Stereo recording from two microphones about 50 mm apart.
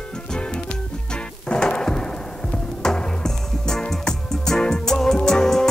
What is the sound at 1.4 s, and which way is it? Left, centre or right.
Music, centre.